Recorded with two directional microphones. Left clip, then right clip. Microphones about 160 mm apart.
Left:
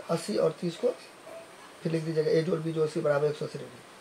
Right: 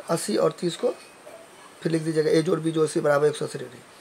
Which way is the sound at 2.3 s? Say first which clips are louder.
Right 5 dB; 70° right (ahead or behind).